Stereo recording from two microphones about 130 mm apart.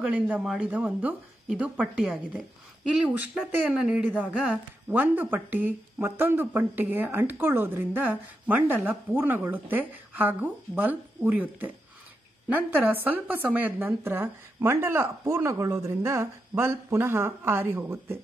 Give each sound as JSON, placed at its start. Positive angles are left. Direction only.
{"t": 0.0, "sound": "a woman's voice", "side_deg": -10}